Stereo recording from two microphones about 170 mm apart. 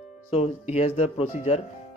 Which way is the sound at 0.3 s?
40° left (ahead or behind).